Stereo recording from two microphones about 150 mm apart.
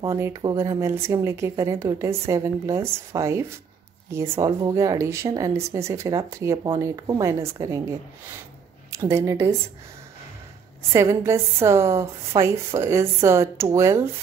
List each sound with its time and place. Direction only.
0.0 s speech: 20° right (ahead or behind)
8.9 s speech: 20° right (ahead or behind)
10.9 s speech: 20° right (ahead or behind)